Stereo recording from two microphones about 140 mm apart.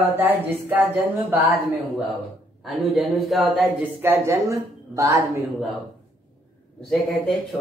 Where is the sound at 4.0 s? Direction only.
20° right (ahead or behind).